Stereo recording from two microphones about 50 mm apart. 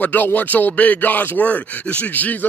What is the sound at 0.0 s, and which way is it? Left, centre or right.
Speech, left.